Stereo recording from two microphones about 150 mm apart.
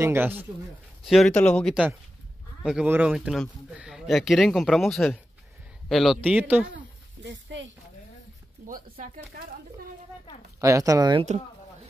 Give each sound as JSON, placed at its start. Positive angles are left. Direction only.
{"t": 0.0, "sound": "speech", "side_deg": -15}
{"t": 1.0, "sound": "speech", "side_deg": 0}
{"t": 2.6, "sound": "speech", "side_deg": -5}
{"t": 6.3, "sound": "speech", "side_deg": -10}
{"t": 9.0, "sound": "speech", "side_deg": -70}
{"t": 10.6, "sound": "speech", "side_deg": -20}